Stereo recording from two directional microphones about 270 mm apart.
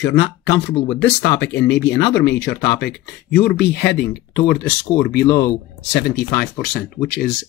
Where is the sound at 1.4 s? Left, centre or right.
Left.